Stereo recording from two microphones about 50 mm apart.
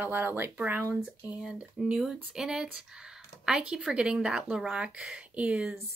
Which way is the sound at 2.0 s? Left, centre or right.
Centre.